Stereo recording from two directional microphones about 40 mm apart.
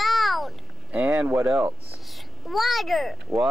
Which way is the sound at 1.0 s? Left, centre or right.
Right.